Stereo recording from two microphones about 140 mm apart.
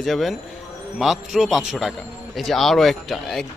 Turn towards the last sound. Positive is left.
turn(degrees=0)  # may be behind; listen again after turning